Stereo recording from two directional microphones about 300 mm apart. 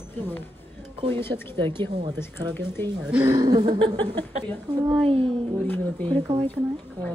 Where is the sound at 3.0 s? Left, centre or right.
Centre.